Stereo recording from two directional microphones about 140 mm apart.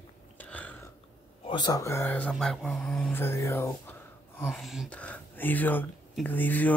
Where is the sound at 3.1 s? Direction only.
15° left (ahead or behind).